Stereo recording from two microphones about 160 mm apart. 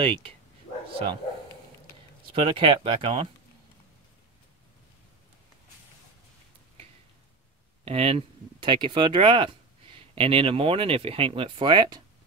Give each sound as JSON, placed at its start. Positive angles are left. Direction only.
{"t": 0.0, "sound": "speech", "side_deg": -35}
{"t": 2.2, "sound": "speech", "side_deg": -35}
{"t": 7.8, "sound": "speech", "side_deg": -40}